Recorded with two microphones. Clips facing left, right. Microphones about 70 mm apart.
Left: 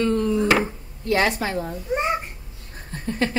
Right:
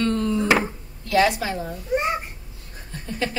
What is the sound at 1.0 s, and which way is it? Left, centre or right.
Speech, left.